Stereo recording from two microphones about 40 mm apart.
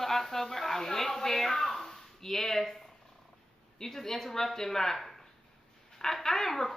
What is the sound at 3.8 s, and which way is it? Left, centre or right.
Speech, centre.